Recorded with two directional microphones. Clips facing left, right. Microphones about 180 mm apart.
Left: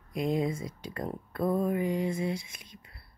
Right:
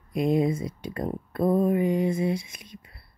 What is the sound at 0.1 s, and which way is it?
A man's voice, 20° right (ahead or behind).